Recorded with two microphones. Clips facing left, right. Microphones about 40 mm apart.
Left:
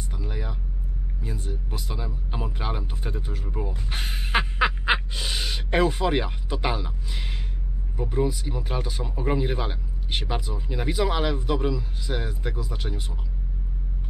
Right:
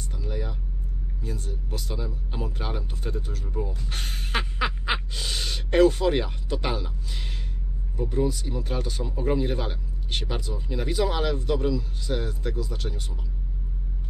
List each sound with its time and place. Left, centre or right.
0.2 s vehicle: centre
1.2 s speech: centre